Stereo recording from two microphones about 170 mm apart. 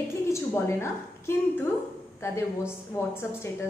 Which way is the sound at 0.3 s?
15° left (ahead or behind).